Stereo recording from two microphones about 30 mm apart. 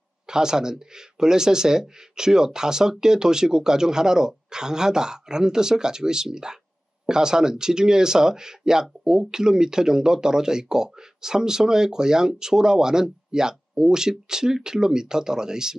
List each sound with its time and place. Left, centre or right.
0.3 s speech: right